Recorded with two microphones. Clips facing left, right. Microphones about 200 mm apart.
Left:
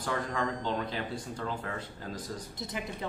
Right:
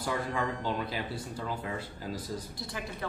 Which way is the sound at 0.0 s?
10° right (ahead or behind).